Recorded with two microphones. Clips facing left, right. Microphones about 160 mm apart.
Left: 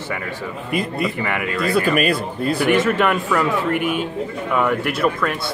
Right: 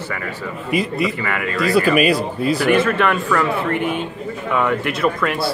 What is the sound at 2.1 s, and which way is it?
Speech, 55° left (ahead or behind).